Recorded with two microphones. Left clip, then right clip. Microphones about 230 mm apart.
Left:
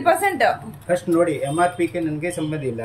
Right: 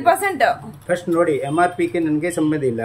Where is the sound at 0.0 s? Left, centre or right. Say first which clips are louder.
Right 1 dB; centre.